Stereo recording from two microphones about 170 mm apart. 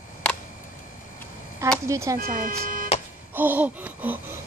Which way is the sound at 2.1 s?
55° right (ahead or behind).